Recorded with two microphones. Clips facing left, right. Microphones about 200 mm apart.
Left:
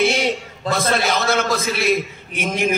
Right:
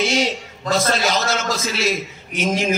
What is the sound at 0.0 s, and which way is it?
A man's voice, 60° left (ahead or behind).